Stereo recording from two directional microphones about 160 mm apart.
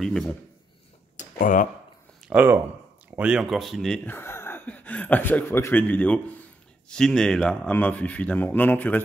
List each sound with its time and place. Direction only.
0.0 s a man's voice: 5° left (ahead or behind)
1.1 s a sound: 55° left (ahead or behind)
2.2 s speech: 10° right (ahead or behind); by 9.0 s 10° left (ahead or behind)